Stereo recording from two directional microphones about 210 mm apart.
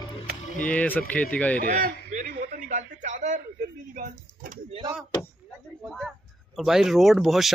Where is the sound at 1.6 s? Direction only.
40° right (ahead or behind).